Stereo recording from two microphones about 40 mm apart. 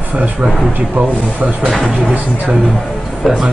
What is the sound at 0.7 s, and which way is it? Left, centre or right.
Speech, right.